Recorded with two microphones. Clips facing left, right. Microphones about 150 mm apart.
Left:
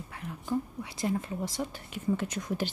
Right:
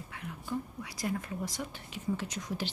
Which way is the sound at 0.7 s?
25° left (ahead or behind).